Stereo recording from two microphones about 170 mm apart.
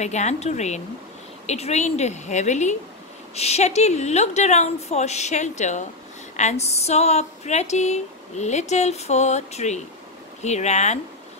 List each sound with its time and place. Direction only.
0.0 s speech: 45° left (ahead or behind)